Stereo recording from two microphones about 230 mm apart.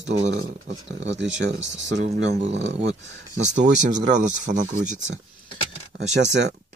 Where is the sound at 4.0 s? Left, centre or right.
Right.